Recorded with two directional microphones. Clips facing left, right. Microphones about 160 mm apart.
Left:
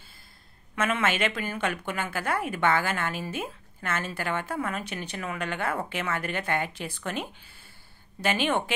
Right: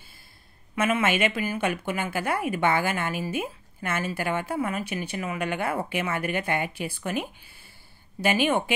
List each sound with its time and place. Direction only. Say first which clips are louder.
0.7 s speech: right 3 dB; 10° right (ahead or behind)